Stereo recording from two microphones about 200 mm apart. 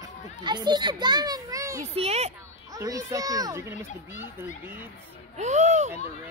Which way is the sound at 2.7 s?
15° right (ahead or behind).